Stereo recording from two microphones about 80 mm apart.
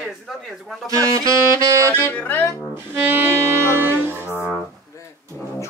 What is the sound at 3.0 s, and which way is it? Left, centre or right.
Music, right.